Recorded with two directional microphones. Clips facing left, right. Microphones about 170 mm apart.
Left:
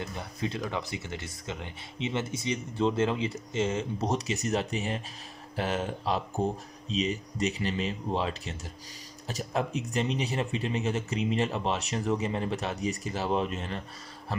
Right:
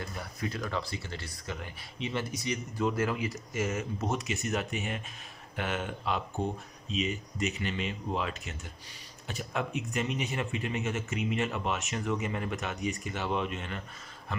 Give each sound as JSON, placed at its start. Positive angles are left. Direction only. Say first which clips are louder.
{"t": 0.0, "sound": "speech", "louder": "left 3 dB", "side_deg": 20}